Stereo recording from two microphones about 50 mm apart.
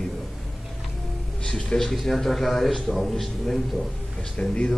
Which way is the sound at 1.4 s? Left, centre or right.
Centre.